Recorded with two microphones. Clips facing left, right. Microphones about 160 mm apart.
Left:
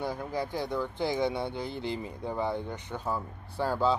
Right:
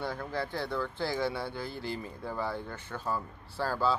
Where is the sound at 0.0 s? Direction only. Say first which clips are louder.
Left 2 dB; 15° left (ahead or behind).